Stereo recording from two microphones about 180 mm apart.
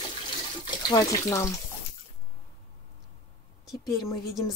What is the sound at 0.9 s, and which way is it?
Speech, 15° left (ahead or behind).